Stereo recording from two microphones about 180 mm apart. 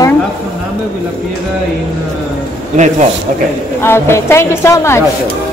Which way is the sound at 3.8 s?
15° left (ahead or behind).